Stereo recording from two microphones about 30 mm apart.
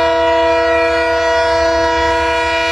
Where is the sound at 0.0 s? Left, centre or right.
Centre.